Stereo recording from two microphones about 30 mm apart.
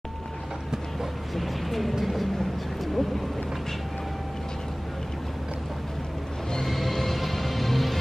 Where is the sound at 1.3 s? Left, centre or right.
Centre.